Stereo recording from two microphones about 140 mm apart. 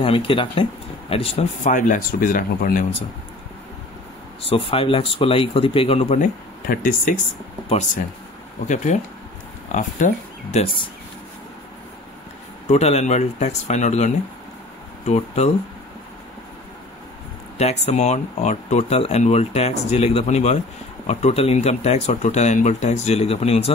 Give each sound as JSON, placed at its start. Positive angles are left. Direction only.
{"t": 0.0, "sound": "speech", "side_deg": 40}
{"t": 4.4, "sound": "speech", "side_deg": 40}
{"t": 6.7, "sound": "speech", "side_deg": 80}
{"t": 8.6, "sound": "speech", "side_deg": 60}
{"t": 12.6, "sound": "speech", "side_deg": 50}
{"t": 17.6, "sound": "speech", "side_deg": 50}